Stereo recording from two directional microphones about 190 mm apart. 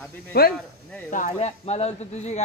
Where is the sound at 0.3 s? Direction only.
55° left (ahead or behind).